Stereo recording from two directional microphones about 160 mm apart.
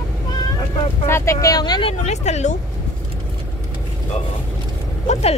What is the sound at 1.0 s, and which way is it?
Speech, 15° left (ahead or behind).